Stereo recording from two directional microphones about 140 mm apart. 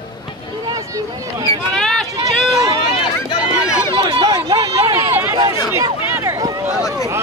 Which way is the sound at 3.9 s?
35° right (ahead or behind).